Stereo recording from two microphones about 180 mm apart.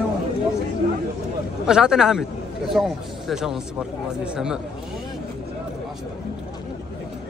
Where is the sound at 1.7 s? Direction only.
5° right (ahead or behind).